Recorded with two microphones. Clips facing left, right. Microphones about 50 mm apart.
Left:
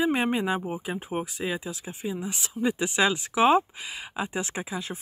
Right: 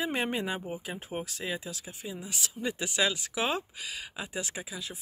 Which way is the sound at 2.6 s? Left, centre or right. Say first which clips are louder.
Left 8 dB; centre.